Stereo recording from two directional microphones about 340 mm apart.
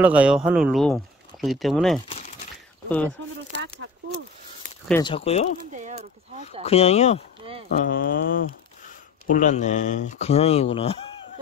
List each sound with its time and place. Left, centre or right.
0.0 s speech: centre
2.0 s crumpling: centre
3.2 s a sound: right
4.8 s speech: centre
5.8 s speech: centre
6.6 s speech: centre